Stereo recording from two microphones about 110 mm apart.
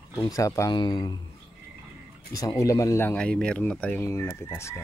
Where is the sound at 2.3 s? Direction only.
35° left (ahead or behind).